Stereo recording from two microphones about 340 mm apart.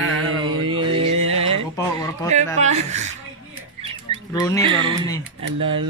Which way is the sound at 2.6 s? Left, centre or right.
Centre.